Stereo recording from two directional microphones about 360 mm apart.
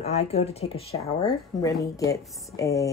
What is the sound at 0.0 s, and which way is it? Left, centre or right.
Speech, centre.